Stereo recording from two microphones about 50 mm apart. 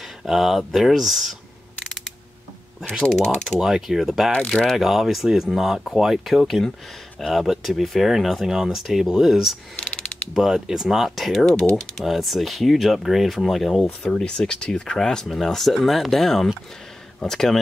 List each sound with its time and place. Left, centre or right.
0.2 s speech: centre
3.1 s speech: centre
3.5 s speech: centre
4.3 s speech: centre
4.7 s speech: centre
9.8 s mechanisms: left
10.3 s speech: centre
14.0 s speech: centre